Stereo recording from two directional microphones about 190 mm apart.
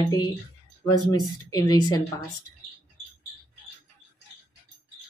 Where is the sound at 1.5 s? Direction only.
20° left (ahead or behind).